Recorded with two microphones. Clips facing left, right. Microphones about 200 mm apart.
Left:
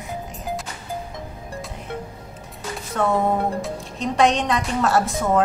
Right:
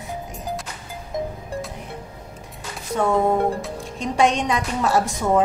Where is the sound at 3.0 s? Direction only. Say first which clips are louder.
Right 2 dB; 10° right (ahead or behind).